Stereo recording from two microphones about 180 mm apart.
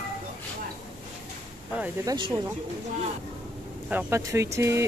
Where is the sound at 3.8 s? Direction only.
10° right (ahead or behind).